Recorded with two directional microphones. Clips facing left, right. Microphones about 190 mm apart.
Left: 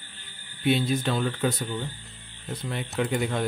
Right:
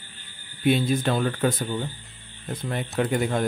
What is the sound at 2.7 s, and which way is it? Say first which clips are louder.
Speech: right 3 dB; 50° right (ahead or behind).